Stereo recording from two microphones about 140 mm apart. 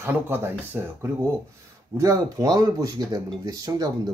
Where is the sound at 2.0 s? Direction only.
25° right (ahead or behind).